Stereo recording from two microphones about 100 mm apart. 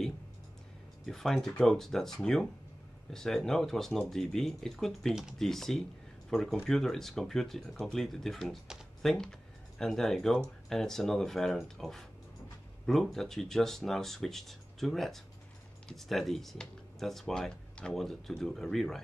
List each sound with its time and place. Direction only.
1.0 s speech: 5° left (ahead or behind)